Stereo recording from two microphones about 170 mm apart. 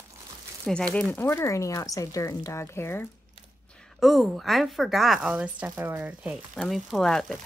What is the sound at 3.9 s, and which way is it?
Speech, centre (ahead or behind).